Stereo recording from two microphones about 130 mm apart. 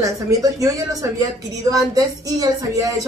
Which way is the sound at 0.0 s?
25° right (ahead or behind).